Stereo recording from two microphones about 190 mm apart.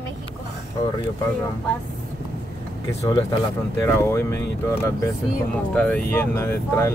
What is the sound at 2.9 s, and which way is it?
Speech, 20° left (ahead or behind).